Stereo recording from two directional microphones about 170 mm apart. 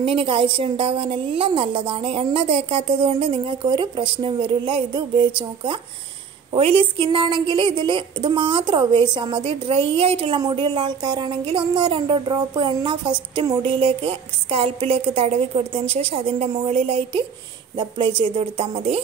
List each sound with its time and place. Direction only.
0.0 s a woman's voice: 30° right (ahead or behind)